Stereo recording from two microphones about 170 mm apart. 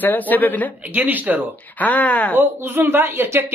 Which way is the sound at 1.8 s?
10° left (ahead or behind).